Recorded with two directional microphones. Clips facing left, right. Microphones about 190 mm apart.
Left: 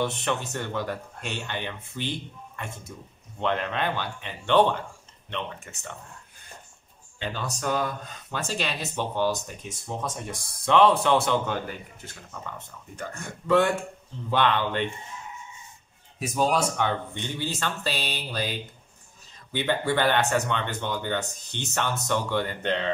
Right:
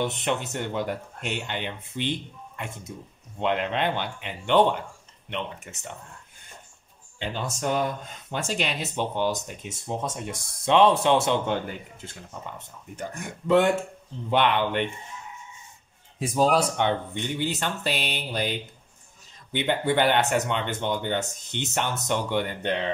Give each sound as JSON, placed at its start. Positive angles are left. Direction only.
{"t": 0.0, "sound": "speech", "side_deg": -20}
{"t": 7.2, "sound": "speech", "side_deg": -20}
{"t": 16.2, "sound": "speech", "side_deg": -30}
{"t": 16.8, "sound": "speech", "side_deg": -15}